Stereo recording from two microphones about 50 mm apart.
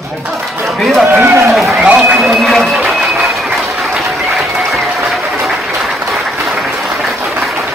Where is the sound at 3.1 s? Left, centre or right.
Centre.